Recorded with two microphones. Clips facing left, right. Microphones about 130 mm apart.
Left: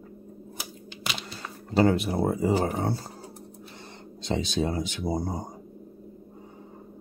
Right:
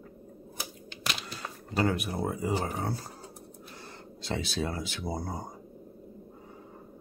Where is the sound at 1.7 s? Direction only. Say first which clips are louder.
Left 7 dB; 30° left (ahead or behind).